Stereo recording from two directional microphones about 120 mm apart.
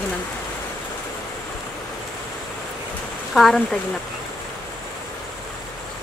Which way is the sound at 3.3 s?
Centre (ahead or behind).